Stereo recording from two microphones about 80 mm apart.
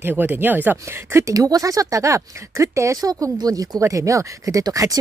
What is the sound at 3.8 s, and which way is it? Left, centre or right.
Speech, right.